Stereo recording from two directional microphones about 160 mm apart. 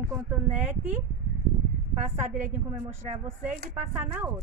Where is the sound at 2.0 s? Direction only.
50° right (ahead or behind).